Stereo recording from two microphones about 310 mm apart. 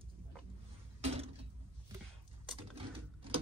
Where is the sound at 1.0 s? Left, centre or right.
Centre.